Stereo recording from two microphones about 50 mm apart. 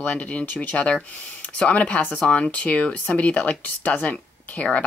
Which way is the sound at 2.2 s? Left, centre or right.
Centre.